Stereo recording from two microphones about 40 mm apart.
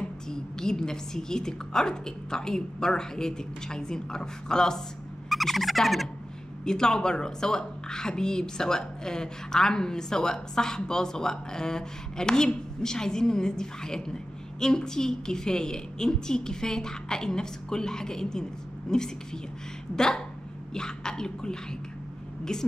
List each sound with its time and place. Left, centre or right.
0.3 s a woman's voice: centre
5.3 s turkey: centre
6.6 s a woman's voice: centre